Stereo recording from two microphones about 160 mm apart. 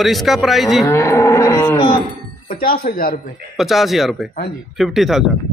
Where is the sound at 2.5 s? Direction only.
65° left (ahead or behind).